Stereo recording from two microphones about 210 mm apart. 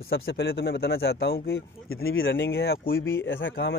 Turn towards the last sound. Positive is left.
turn(degrees=60)  # may be behind; listen again after turning